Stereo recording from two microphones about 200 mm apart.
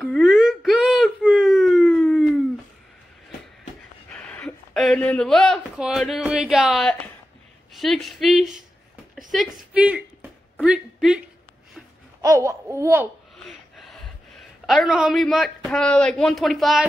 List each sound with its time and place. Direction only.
0.0 s whimper: centre (ahead or behind)
4.1 s speech: 5° left (ahead or behind)
10.6 s a sound: 5° right (ahead or behind)
12.2 s babbling: 15° right (ahead or behind)
13.5 s speech: centre (ahead or behind)